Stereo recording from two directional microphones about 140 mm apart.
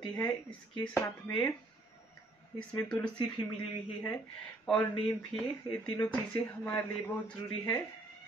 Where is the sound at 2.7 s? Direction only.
5° left (ahead or behind).